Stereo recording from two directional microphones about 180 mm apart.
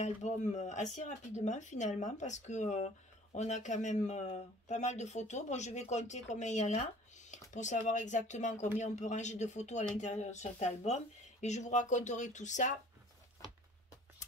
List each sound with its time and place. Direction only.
0.0 s speech: 40° left (ahead or behind)